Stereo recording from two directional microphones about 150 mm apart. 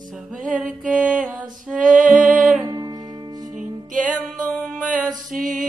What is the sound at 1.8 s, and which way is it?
Music, 60° right (ahead or behind).